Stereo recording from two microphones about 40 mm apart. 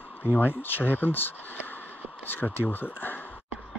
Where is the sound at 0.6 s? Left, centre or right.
Left.